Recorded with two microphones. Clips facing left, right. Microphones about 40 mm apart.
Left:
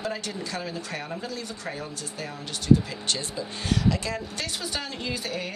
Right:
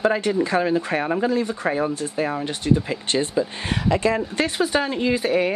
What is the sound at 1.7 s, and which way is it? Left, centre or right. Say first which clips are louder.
Speech: right 12 dB; right.